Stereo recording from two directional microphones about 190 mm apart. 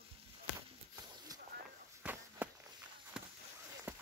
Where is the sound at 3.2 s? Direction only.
5° right (ahead or behind).